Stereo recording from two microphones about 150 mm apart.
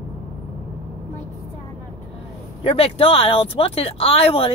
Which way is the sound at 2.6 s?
40° left (ahead or behind).